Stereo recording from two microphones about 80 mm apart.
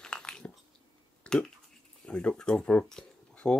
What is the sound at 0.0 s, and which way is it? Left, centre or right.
Biting, centre.